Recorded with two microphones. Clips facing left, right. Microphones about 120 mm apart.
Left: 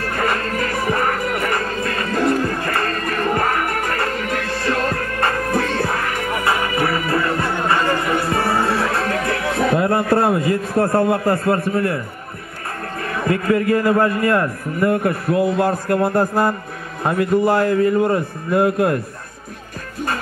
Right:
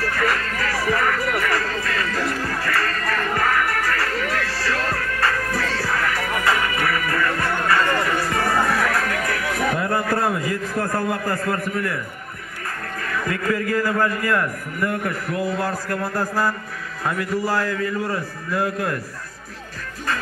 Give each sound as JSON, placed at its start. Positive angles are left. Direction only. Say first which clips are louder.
{"t": 0.0, "sound": "music", "louder": "left 2 dB", "side_deg": 25}
{"t": 2.1, "sound": "music", "louder": "left 7 dB", "side_deg": 50}
{"t": 2.4, "sound": "music", "louder": "left 3 dB", "side_deg": 25}
{"t": 13.0, "sound": "a man's voice", "louder": "left 4 dB", "side_deg": 25}